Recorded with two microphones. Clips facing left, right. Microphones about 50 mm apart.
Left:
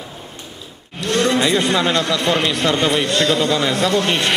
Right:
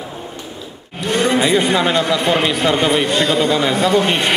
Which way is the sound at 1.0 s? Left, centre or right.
Centre.